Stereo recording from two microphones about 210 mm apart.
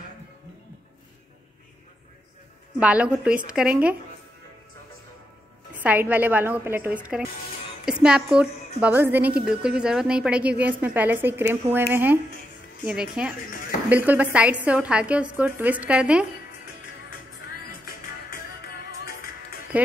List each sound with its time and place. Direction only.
2.8 s a woman's voice: 5° right (ahead or behind)
5.7 s a woman's voice: 5° right (ahead or behind)
18.9 s music: 45° left (ahead or behind)